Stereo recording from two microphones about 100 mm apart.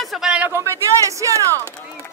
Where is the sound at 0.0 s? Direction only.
Centre (ahead or behind).